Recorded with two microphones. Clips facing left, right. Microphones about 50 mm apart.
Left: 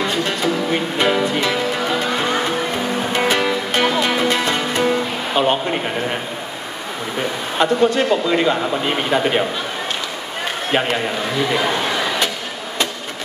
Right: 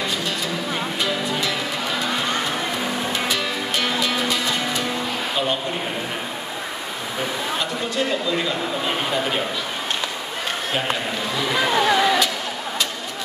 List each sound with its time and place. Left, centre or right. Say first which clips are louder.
0.1 s music: left 6 dB; left
3.1 s music: left 6 dB; left
7.5 s speech: left 13 dB; left